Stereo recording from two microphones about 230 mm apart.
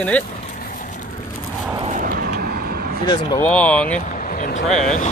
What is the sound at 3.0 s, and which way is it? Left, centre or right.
Speech, centre.